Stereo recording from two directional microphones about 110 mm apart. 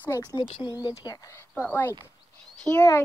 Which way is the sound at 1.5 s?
15° left (ahead or behind).